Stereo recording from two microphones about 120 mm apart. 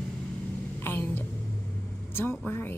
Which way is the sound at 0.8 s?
20° left (ahead or behind).